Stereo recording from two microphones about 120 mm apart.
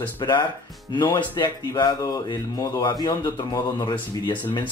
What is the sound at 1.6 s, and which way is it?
Speech, 30° left (ahead or behind).